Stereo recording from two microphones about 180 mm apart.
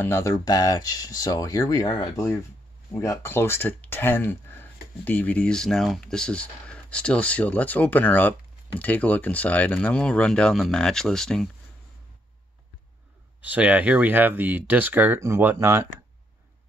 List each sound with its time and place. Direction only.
0.0 s speech: 15° left (ahead or behind)
13.4 s speech: 10° right (ahead or behind)